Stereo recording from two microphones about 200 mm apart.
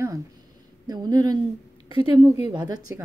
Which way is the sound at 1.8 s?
30° left (ahead or behind).